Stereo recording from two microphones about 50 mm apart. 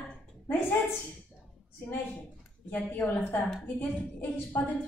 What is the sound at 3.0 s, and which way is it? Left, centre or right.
Speech, centre.